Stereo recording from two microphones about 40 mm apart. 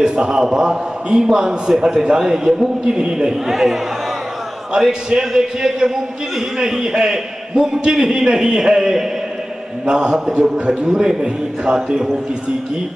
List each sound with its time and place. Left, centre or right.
0.0 s a man's voice: right
3.4 s a man's voice: centre
4.7 s a man's voice: centre